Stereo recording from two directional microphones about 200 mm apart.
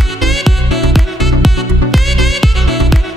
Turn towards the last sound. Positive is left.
turn(degrees=0)  # may be behind; listen again after turning